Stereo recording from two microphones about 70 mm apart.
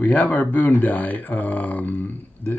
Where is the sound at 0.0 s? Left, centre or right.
Left.